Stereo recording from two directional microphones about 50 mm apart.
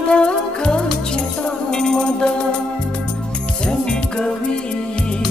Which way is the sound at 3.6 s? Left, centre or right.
Centre.